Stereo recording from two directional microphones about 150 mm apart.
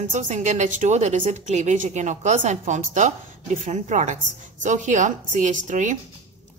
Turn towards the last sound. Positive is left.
turn(degrees=-55)  # may be behind; listen again after turning